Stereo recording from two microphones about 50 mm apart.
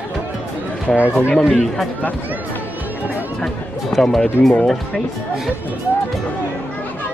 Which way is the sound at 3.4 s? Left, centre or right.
Centre.